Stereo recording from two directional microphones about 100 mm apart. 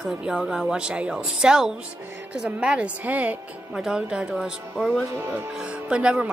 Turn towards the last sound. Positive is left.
turn(degrees=-10)  # may be behind; listen again after turning